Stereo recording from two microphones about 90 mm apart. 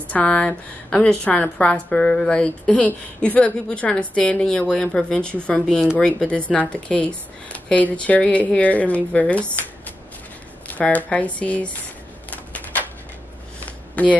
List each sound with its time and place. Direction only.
0.1 s speech: 15° left (ahead or behind)
10.7 s speech: 20° left (ahead or behind)